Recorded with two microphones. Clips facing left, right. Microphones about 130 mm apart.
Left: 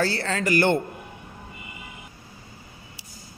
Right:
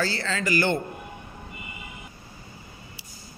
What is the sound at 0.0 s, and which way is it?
Speech, 60° left (ahead or behind).